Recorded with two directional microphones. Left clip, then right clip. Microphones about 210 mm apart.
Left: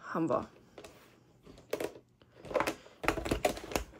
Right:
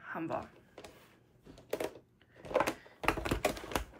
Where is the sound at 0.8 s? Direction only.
Centre (ahead or behind).